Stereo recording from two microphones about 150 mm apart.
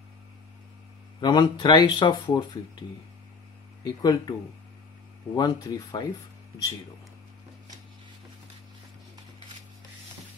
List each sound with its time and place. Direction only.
1.2 s speech: 30° left (ahead or behind)
3.8 s speech: 25° left (ahead or behind)